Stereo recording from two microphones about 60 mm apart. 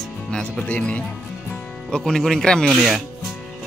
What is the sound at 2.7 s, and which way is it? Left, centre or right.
Speech, centre.